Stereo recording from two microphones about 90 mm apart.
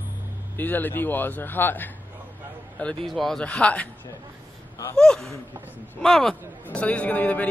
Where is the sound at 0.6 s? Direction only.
20° left (ahead or behind).